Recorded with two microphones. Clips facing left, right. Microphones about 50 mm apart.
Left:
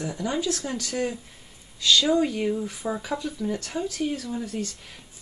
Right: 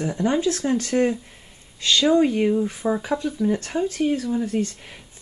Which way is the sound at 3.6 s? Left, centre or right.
Right.